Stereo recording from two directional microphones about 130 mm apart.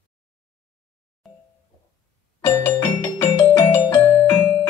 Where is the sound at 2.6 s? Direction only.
15° left (ahead or behind).